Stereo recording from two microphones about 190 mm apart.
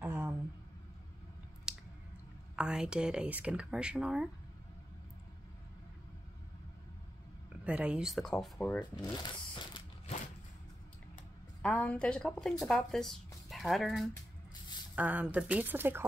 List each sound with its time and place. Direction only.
0.0 s a sound: 10° right (ahead or behind)
1.7 s squish: 5° right (ahead or behind)
2.5 s speech: 5° right (ahead or behind)
7.6 s speech: 5° right (ahead or behind)
8.9 s a sound: 20° left (ahead or behind)
11.6 s speech: 5° left (ahead or behind); by 16.1 s 10° right (ahead or behind)